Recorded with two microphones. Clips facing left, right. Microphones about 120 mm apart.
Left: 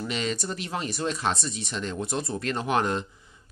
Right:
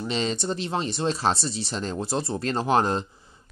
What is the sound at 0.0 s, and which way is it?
Speech, 30° right (ahead or behind).